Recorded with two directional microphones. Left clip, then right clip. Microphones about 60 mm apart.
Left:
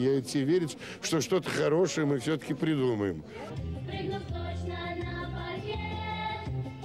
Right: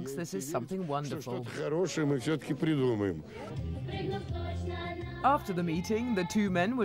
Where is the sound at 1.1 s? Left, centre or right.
Left.